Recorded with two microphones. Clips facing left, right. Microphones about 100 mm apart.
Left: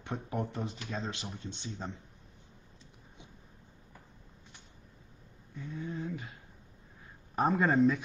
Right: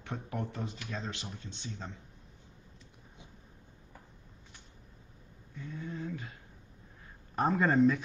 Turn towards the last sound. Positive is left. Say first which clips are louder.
# even
turn(degrees=0)  # may be behind; listen again after turning